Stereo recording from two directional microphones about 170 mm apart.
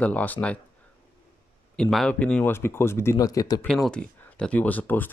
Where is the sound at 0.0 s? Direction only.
10° left (ahead or behind).